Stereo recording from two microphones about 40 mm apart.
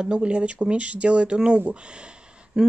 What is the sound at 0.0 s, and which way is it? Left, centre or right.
Speech, right.